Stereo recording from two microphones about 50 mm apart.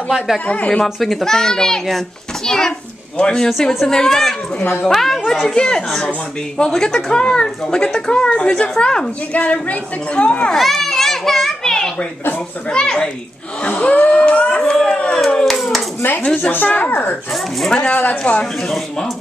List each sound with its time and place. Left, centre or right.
0.5 s a woman's voice: left
1.0 s a child's voice: centre
9.3 s a woman's voice: left
10.5 s a sound: centre
12.6 s a woman's voice: centre
14.6 s a child's voice: centre
15.1 s hands: centre
16.5 s speech: left
18.2 s a woman's voice: left